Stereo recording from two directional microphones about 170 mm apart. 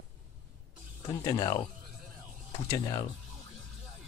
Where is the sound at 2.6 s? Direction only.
20° left (ahead or behind).